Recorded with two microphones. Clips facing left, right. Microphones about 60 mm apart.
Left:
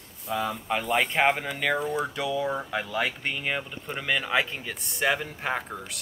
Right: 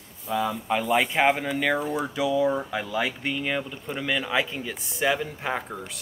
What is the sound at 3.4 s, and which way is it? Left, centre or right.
Speech, centre.